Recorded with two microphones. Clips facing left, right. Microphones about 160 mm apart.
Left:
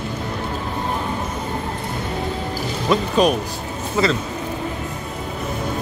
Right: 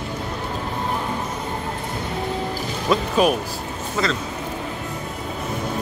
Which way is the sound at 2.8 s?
5° right (ahead or behind).